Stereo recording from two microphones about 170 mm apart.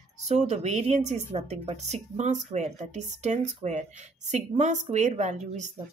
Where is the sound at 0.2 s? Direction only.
40° right (ahead or behind).